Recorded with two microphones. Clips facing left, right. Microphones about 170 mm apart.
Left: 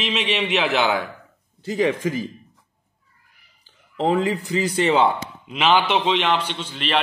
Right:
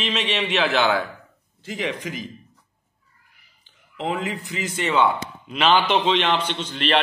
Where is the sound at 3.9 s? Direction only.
40° left (ahead or behind).